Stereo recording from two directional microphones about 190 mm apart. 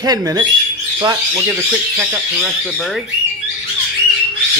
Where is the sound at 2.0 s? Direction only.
10° right (ahead or behind).